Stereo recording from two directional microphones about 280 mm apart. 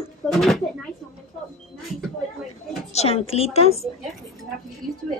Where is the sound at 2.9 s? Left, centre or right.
Left.